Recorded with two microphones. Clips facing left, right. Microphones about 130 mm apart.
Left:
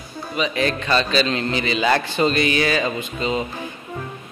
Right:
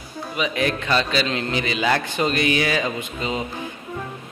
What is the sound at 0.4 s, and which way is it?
A man's voice, 10° right (ahead or behind).